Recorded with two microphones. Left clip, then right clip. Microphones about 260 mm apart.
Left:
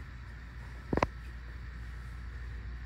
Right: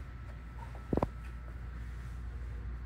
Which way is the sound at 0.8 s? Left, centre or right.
Right.